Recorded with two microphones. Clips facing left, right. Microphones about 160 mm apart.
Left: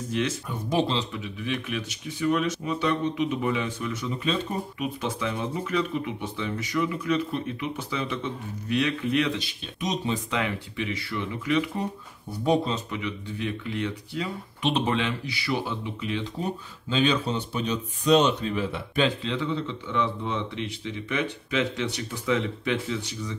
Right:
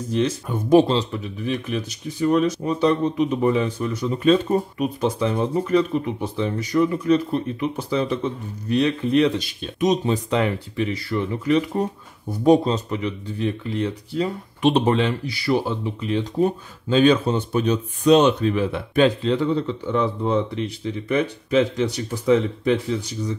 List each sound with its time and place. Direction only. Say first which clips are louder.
0.5 s speech: right 13 dB; 50° right (ahead or behind)
16.4 s speech: right 10 dB; 50° right (ahead or behind)